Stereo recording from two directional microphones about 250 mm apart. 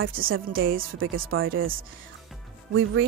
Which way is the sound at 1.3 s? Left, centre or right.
Right.